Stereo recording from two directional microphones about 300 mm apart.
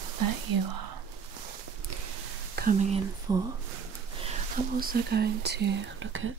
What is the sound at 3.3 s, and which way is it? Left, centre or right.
Speech, centre.